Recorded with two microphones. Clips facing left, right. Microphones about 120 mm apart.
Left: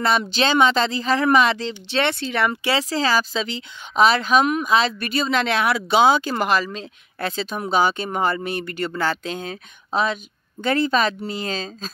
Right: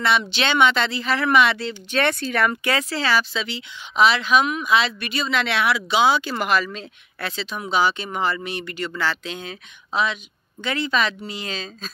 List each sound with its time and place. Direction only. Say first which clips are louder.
0.0 s a woman's voice: left 2 dB; 40° left (ahead or behind)
1.7 s a woman's voice: even; 20° left (ahead or behind); by 11.9 s 40° left (ahead or behind)